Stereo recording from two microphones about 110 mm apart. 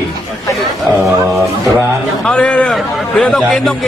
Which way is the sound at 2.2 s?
10° left (ahead or behind).